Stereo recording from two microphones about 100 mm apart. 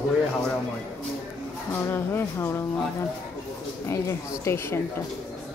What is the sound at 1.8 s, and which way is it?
Speech, 25° left (ahead or behind).